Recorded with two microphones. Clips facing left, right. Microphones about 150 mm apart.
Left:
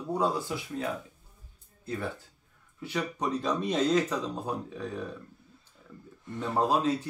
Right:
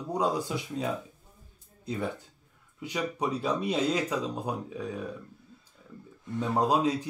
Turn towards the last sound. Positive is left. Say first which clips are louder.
# right 1 dB
turn(degrees=-15)  # may be behind; listen again after turning